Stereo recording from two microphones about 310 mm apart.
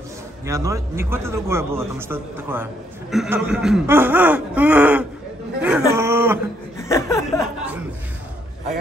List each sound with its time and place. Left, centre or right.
0.5 s a man's voice: centre
5.6 s a sound: centre
6.8 s chuckle: centre